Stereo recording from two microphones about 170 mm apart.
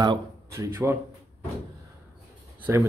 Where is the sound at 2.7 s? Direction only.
15° right (ahead or behind).